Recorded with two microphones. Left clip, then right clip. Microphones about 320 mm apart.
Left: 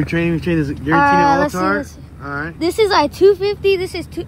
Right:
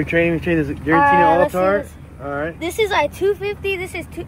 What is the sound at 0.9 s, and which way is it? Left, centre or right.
Speech, left.